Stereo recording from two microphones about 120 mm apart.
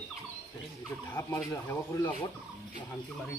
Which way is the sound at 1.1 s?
25° left (ahead or behind).